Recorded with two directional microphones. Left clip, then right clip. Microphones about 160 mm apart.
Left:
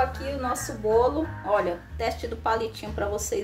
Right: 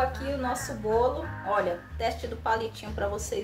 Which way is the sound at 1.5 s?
30° left (ahead or behind).